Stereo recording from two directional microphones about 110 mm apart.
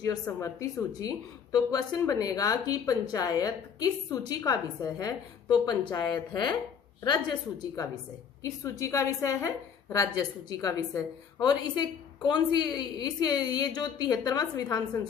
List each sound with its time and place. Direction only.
0.0 s a woman's voice: 30° left (ahead or behind)